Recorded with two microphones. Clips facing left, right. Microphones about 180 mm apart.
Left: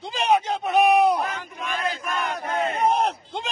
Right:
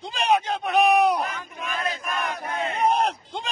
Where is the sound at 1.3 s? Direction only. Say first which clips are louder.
Left 2 dB; 30° left (ahead or behind).